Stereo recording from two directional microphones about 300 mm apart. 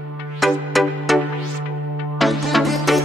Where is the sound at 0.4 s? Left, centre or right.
Centre.